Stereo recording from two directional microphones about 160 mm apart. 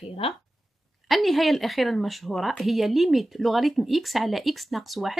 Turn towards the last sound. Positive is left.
turn(degrees=0)  # may be behind; listen again after turning